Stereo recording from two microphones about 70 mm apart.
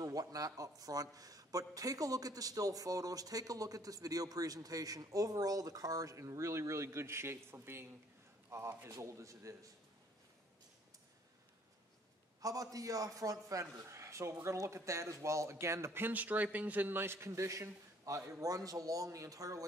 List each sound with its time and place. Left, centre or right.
0.0 s a man's voice: right
12.4 s a man's voice: right